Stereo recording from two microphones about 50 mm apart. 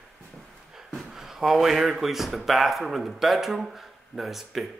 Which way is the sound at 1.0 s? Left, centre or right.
Centre.